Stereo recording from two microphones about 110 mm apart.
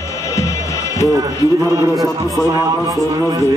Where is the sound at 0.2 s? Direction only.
30° left (ahead or behind).